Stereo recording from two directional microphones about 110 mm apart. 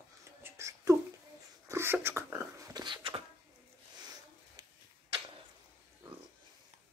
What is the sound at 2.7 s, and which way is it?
Beatboxing, 40° right (ahead or behind).